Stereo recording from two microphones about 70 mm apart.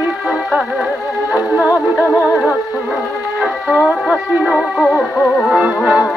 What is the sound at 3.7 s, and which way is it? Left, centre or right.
Music, centre.